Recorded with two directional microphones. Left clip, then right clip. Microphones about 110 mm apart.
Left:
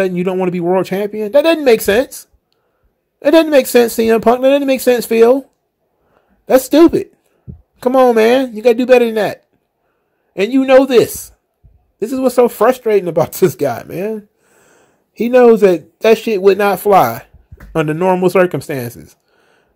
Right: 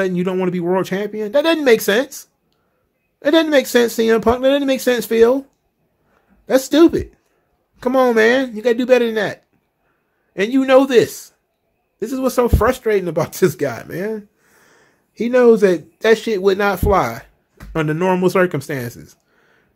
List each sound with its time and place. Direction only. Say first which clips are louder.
0.0 s speech: left 4 dB; 30° left (ahead or behind)
6.4 s a man's voice: left 4 dB; 40° left (ahead or behind)
11.0 s speech: left 3 dB; 45° left (ahead or behind)
12.0 s speech: left 5 dB; 30° left (ahead or behind)
17.9 s speech: left 4 dB; 20° left (ahead or behind)
18.2 s speech: left 4 dB; 30° left (ahead or behind)